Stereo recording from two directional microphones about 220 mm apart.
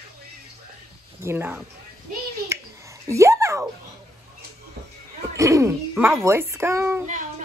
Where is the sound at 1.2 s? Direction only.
10° right (ahead or behind).